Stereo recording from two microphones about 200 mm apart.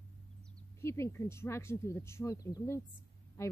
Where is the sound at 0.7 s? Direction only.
15° left (ahead or behind).